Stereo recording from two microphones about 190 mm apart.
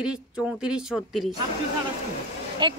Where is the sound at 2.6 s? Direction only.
25° right (ahead or behind).